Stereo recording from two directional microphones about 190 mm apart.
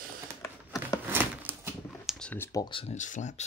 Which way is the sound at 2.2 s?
10° left (ahead or behind).